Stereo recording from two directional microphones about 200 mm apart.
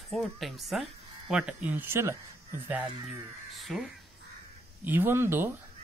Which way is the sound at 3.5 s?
Centre (ahead or behind).